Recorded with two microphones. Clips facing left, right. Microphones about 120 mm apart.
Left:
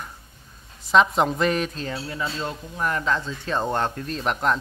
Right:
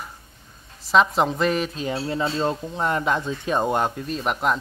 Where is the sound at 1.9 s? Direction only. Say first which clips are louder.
Right 5 dB; 30° right (ahead or behind).